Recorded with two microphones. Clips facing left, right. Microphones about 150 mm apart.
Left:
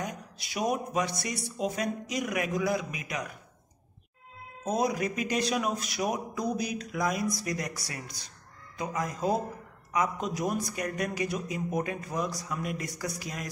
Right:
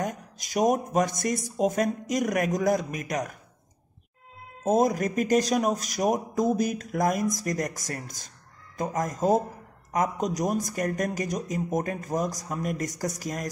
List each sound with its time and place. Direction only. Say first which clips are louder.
0.0 s speech: right 5 dB; 45° right (ahead or behind)
4.6 s speech: right 6 dB; 45° right (ahead or behind)